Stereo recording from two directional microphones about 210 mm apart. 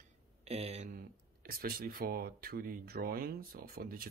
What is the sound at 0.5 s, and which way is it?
Speech, 30° right (ahead or behind).